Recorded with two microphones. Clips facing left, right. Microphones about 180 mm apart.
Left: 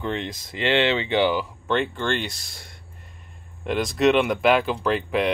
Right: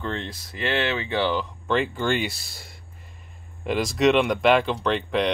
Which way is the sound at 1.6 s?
Centre (ahead or behind).